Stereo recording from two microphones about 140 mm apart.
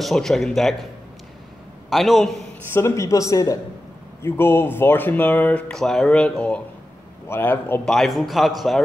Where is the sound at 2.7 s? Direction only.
20° left (ahead or behind).